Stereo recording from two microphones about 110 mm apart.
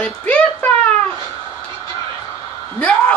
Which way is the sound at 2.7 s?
10° left (ahead or behind).